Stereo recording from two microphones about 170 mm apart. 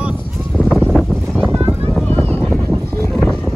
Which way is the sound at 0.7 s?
Centre (ahead or behind).